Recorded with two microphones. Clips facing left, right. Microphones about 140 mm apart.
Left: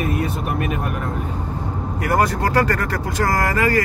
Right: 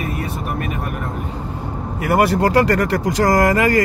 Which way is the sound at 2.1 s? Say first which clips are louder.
Right 4 dB; 15° right (ahead or behind).